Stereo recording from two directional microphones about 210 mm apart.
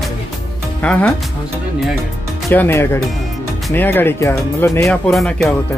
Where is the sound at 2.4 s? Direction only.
10° left (ahead or behind).